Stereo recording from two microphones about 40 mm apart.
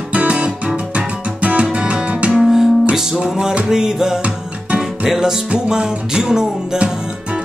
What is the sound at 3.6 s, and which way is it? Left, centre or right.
Music, centre.